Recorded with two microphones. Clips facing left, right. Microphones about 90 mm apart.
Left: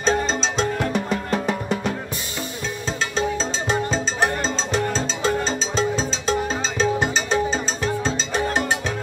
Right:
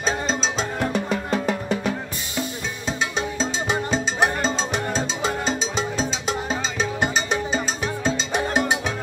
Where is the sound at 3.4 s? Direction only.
15° right (ahead or behind).